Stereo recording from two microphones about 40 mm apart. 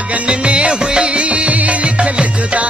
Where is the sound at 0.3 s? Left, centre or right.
Right.